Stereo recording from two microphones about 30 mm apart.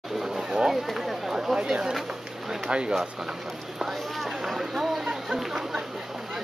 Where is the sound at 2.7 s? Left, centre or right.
Right.